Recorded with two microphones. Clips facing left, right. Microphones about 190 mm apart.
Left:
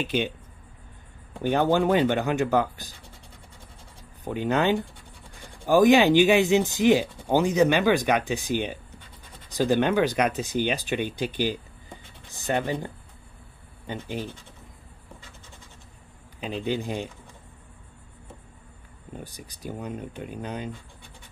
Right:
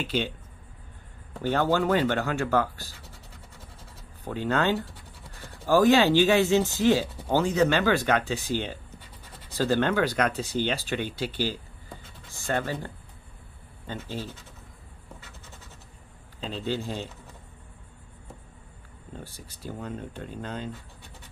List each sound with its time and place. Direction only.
0.0 s speech: 15° left (ahead or behind)
1.4 s speech: 15° left (ahead or behind)
4.2 s speech: 15° left (ahead or behind)
14.0 s speech: 15° left (ahead or behind)
16.3 s speech: 15° left (ahead or behind)
19.1 s speech: 15° left (ahead or behind)